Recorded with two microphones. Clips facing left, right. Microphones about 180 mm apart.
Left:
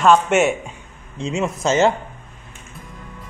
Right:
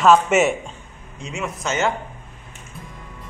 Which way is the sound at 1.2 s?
25° left (ahead or behind).